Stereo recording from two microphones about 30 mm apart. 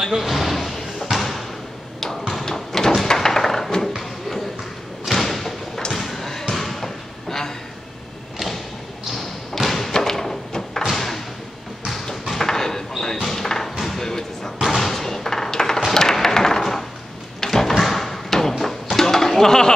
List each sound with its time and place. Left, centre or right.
0.1 s a sound: centre
2.4 s door: centre
3.1 s wood: centre
5.0 s thump: centre
5.9 s basketball bounce: centre
9.7 s thump: centre
11.0 s door: centre
11.9 s basketball bounce: centre
13.2 s a sound: centre
13.9 s basketball bounce: centre
14.6 s a sound: centre